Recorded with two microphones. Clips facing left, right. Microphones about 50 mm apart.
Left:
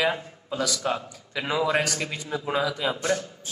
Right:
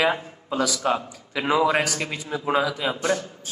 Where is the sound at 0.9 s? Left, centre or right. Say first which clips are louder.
Right 4 dB; right.